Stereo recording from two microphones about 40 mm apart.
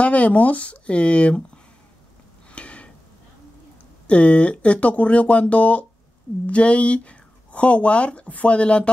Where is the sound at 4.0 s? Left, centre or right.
Left.